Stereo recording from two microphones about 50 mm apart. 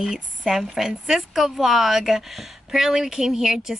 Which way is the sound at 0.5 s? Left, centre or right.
Centre.